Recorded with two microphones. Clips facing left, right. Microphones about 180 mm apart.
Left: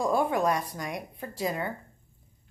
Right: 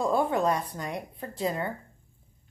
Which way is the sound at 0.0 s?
15° left (ahead or behind).